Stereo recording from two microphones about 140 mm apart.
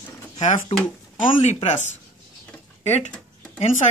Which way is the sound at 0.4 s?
60° left (ahead or behind).